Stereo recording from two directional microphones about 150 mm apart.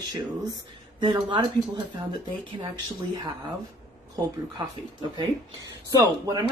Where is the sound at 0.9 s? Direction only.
30° right (ahead or behind).